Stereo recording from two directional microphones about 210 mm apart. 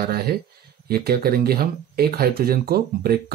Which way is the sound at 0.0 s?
45° right (ahead or behind).